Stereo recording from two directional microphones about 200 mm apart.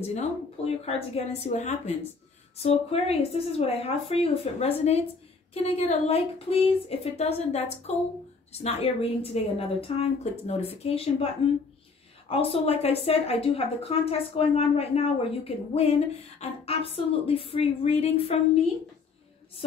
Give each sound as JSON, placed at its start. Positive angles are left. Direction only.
{"t": 0.7, "sound": "a woman's voice", "side_deg": 30}
{"t": 12.3, "sound": "a woman's voice", "side_deg": 30}